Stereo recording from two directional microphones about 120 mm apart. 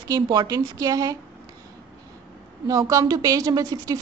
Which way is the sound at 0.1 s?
35° right (ahead or behind).